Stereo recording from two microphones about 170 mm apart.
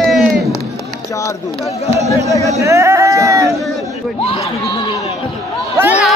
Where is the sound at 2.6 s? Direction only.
15° right (ahead or behind).